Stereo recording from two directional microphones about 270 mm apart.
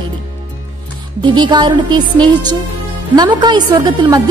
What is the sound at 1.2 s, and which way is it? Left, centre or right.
Speech, centre.